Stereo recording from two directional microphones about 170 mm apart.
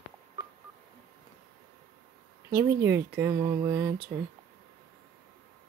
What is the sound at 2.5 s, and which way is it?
Speech, 15° right (ahead or behind).